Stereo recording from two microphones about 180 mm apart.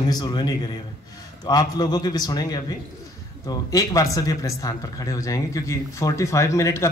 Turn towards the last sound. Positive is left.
turn(degrees=15)  # may be behind; listen again after turning